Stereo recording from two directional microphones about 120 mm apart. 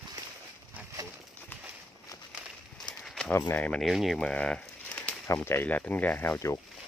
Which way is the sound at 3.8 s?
Centre (ahead or behind).